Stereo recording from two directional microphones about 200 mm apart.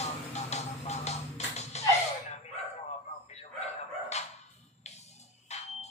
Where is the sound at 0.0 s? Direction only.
35° left (ahead or behind).